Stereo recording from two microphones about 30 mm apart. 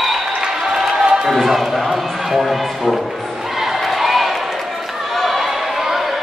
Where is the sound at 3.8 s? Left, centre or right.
Centre.